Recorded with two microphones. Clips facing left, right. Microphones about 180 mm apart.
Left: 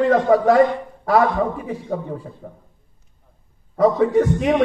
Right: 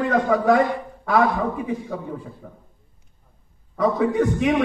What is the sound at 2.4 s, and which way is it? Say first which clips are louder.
Speech: left 4 dB; 35° left (ahead or behind).